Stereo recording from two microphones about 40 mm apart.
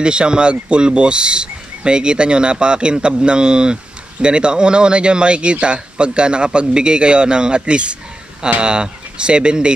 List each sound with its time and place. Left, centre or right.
0.0 s speech: right